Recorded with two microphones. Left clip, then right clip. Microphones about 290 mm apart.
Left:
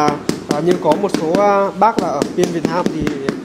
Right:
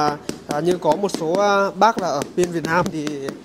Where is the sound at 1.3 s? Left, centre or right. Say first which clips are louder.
Left 3 dB; centre.